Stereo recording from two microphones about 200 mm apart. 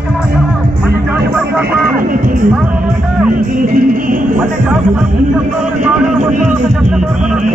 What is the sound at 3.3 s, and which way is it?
Music, 45° right (ahead or behind).